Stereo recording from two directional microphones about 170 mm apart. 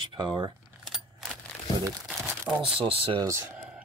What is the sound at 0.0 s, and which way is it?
Speech, 30° right (ahead or behind).